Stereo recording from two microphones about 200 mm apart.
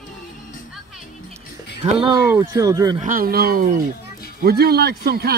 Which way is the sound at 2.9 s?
40° right (ahead or behind).